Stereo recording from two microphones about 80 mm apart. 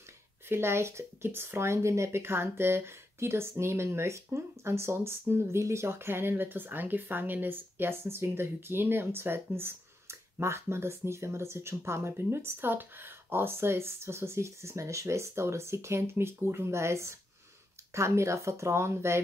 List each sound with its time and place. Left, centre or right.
0.5 s speech: right